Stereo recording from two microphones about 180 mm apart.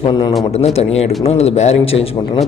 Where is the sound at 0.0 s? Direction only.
25° left (ahead or behind).